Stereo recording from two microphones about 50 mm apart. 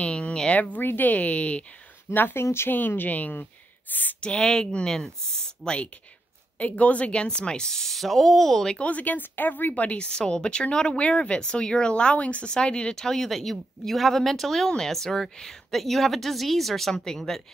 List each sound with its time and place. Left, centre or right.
0.0 s a sound: left
0.6 s speech: left
2.1 s speech: left
2.4 s speech: left
2.7 s speech: left
4.4 s a woman's voice: centre
6.6 s a woman's voice: left; by 8.7 s centre
8.7 s a woman's voice: left; by 17.4 s centre